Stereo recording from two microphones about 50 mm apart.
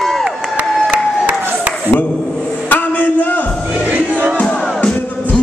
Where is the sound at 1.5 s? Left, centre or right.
Right.